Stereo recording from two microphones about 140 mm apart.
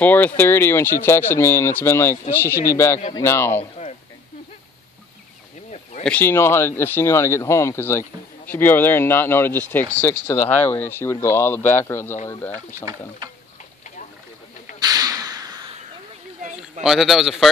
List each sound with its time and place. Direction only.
0.0 s speech: 15° left (ahead or behind)
6.0 s speech: 15° left (ahead or behind)
14.8 s a sound: 30° right (ahead or behind)
16.8 s a man's voice: centre (ahead or behind)